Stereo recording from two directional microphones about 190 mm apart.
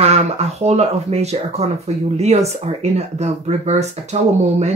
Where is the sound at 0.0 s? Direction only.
35° right (ahead or behind).